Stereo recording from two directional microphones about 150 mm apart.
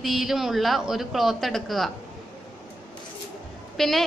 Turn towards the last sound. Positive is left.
turn(degrees=0)  # may be behind; listen again after turning